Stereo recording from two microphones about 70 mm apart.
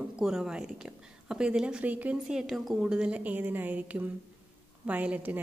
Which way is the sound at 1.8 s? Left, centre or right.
Right.